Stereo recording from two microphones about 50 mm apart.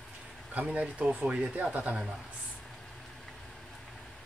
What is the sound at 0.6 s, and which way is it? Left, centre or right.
Speech, right.